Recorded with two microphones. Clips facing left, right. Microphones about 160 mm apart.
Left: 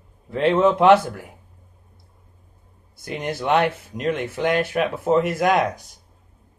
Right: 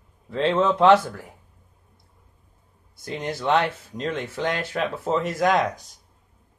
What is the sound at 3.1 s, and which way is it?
Speech, 10° left (ahead or behind).